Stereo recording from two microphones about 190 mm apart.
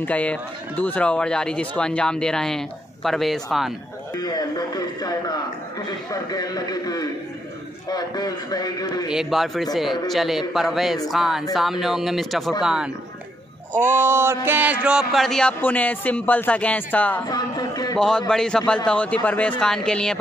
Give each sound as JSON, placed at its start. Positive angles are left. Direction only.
{"t": 0.0, "sound": "speech", "side_deg": 5}
{"t": 4.2, "sound": "a sound", "side_deg": 20}
{"t": 5.9, "sound": "a man's voice", "side_deg": 20}
{"t": 9.1, "sound": "speech", "side_deg": 0}
{"t": 17.3, "sound": "a sound", "side_deg": 20}
{"t": 17.9, "sound": "speech", "side_deg": 5}